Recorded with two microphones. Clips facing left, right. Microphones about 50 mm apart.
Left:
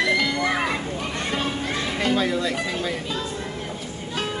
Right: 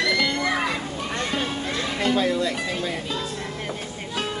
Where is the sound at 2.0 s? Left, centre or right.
Centre.